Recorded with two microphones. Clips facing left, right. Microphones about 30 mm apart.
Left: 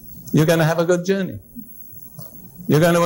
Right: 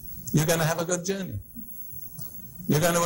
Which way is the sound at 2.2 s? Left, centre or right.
Centre.